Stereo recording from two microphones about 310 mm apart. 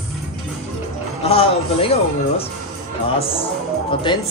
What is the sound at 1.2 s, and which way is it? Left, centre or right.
Speech, centre.